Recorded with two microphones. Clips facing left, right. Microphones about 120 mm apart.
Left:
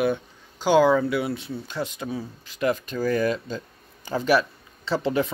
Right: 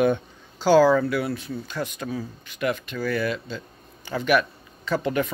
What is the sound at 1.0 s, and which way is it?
Speech, 20° left (ahead or behind).